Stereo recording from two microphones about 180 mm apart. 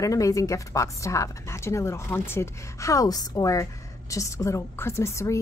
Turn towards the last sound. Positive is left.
turn(degrees=15)  # may be behind; listen again after turning